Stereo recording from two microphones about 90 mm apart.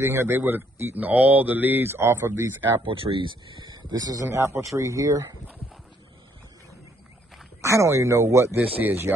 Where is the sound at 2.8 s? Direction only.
85° right; by 4.2 s 45° right (ahead or behind).